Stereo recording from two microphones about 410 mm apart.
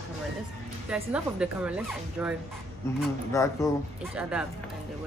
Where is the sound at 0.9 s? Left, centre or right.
Centre.